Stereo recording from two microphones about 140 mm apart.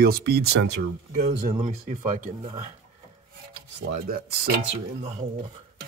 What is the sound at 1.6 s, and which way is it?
Speech, 60° right (ahead or behind).